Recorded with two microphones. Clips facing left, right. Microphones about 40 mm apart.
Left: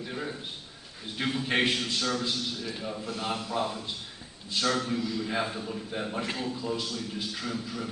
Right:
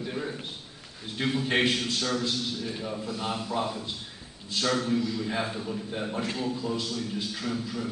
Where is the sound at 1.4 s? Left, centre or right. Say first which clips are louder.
Right 1 dB; centre.